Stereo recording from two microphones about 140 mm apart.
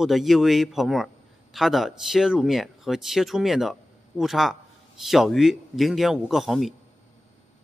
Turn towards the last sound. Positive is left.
turn(degrees=0)  # may be behind; listen again after turning